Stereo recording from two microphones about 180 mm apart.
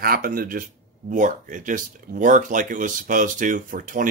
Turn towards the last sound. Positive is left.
turn(degrees=-50)  # may be behind; listen again after turning